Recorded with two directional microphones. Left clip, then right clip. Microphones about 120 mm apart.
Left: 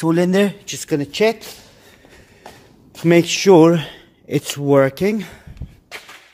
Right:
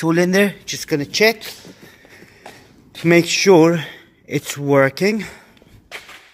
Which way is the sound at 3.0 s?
15° left (ahead or behind).